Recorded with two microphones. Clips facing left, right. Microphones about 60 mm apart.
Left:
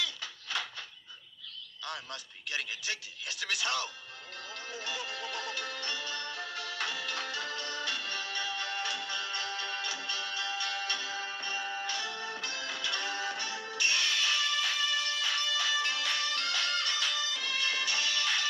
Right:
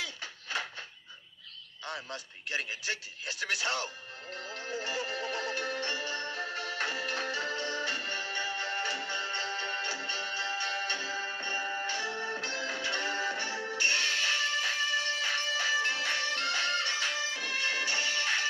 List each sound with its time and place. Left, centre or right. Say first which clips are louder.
0.0 s a sound: left 1 dB; right
1.9 s speech: right 2 dB; right
4.4 s music: right 4 dB; right